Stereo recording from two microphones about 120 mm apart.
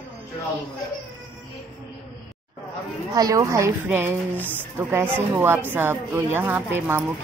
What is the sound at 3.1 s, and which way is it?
A woman's voice, 30° right (ahead or behind).